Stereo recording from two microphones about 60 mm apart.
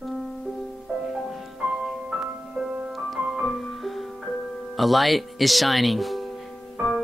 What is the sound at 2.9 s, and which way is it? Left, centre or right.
Music, centre.